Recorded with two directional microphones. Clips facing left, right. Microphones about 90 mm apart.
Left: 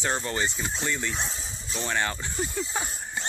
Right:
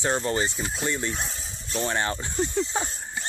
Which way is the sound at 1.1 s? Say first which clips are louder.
Even; centre (ahead or behind).